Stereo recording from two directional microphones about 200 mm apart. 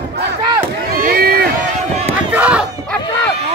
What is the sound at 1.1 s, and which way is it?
Run, 50° right (ahead or behind).